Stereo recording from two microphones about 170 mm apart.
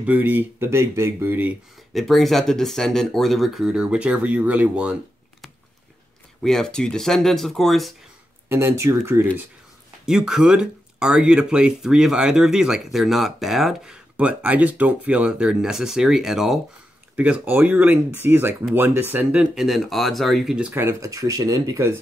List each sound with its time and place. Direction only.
0.0 s speech: 10° right (ahead or behind)
2.0 s speech: centre (ahead or behind)
6.4 s speech: 5° left (ahead or behind)
8.5 s speech: 15° right (ahead or behind)
10.0 s speech: 5° right (ahead or behind); by 21.9 s 20° right (ahead or behind)